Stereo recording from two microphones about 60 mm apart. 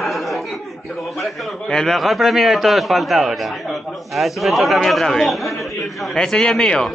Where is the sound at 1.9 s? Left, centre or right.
Centre.